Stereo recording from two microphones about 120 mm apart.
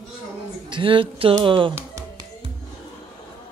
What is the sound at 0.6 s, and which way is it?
Speech, 45° right (ahead or behind).